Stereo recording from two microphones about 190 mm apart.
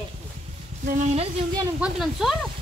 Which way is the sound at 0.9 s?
40° right (ahead or behind).